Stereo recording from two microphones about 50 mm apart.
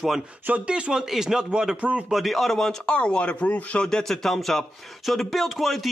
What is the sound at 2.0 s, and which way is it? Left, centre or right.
Speech, centre.